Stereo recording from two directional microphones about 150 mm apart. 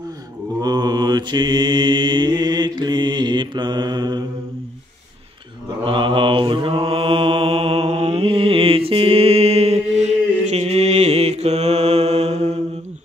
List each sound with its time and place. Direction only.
0.6 s mantra: 25° right (ahead or behind)
5.9 s mantra: 30° right (ahead or behind)